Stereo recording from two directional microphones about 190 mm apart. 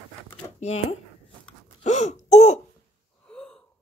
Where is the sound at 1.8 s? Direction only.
35° left (ahead or behind).